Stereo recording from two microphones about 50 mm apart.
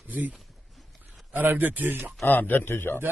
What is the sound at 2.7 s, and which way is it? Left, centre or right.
Speech, left.